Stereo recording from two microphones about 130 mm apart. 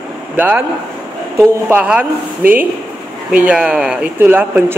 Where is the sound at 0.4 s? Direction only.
15° right (ahead or behind).